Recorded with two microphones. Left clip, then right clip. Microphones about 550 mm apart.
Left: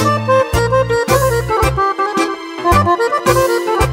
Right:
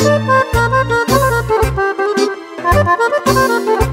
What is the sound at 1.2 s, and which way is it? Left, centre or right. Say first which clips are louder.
Accordion: right 1 dB; centre.